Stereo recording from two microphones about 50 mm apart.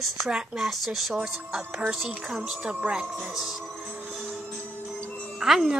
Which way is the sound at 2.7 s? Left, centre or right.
Right.